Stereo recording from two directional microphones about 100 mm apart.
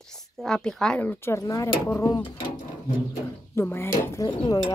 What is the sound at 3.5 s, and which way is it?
Speech, 25° left (ahead or behind).